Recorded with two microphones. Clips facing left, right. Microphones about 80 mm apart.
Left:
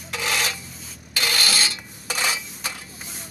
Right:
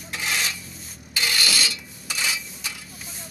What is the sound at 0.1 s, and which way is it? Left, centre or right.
Rub, left.